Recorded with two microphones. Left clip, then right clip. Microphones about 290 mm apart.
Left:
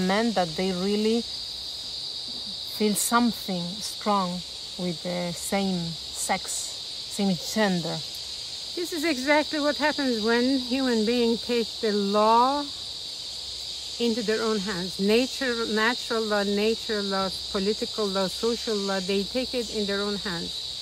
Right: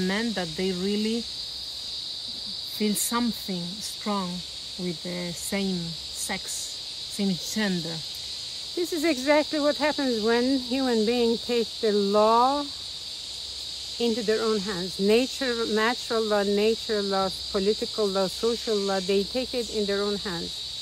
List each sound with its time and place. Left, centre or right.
0.0 s speech: centre
2.8 s speech: centre
7.2 s cricket: centre
8.9 s cricket: centre
13.9 s cricket: centre